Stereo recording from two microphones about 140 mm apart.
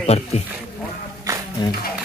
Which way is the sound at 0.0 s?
50° left (ahead or behind).